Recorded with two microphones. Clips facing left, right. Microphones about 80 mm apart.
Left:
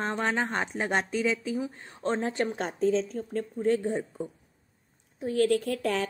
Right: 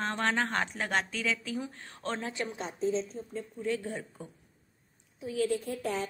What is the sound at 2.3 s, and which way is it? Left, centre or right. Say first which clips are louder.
Speech: left 7 dB; left.